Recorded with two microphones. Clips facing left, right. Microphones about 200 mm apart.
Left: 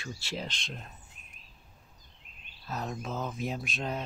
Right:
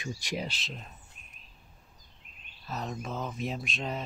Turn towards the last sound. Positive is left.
turn(degrees=0)  # may be behind; listen again after turning